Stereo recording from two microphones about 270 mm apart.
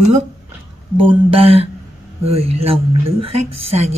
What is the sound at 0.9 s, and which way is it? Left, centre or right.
A woman's voice, right.